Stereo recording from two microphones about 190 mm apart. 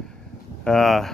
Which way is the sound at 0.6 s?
Centre (ahead or behind).